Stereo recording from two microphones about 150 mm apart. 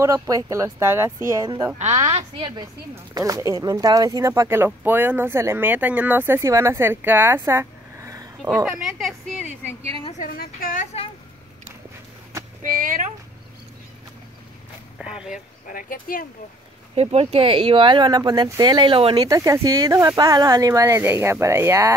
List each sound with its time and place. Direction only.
0.0 s speech: 20° right (ahead or behind)
1.8 s a woman's voice: 45° right (ahead or behind)
2.1 s speech: 30° right (ahead or behind)
8.6 s speech: 5° right (ahead or behind)
10.1 s a woman's voice: 70° left (ahead or behind)
12.6 s speech: 65° right (ahead or behind)
15.0 s speech: 5° right (ahead or behind)
15.7 s speech: 70° left (ahead or behind)
16.9 s speech: 40° right (ahead or behind)
19.1 s speech: 25° right (ahead or behind)